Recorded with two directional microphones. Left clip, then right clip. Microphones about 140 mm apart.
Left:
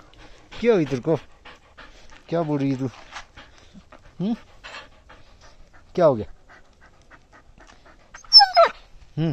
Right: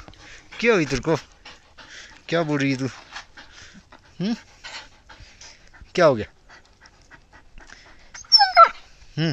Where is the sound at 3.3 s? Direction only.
45° left (ahead or behind).